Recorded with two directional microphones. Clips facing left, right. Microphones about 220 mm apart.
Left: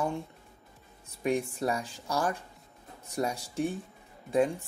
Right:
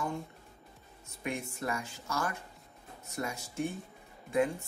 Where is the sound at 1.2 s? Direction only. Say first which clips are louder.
Left 8 dB; 35° left (ahead or behind).